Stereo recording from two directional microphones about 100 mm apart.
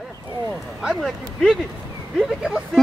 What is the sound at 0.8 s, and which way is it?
Speech, 5° left (ahead or behind).